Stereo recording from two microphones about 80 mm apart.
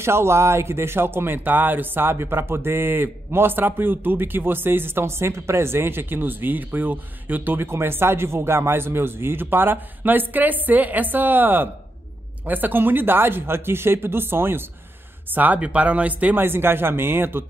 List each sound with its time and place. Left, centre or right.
0.0 s speech: right